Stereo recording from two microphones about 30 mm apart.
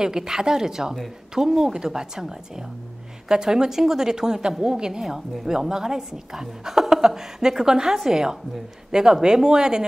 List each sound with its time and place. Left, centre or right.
0.0 s a woman's voice: centre